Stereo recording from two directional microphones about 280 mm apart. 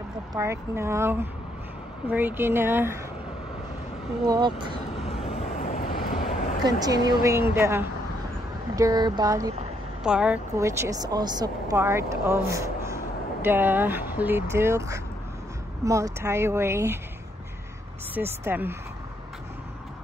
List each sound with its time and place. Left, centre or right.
0.3 s speech: centre
4.3 s speech: centre
5.0 s vehicle: left
6.6 s speech: centre
18.1 s speech: centre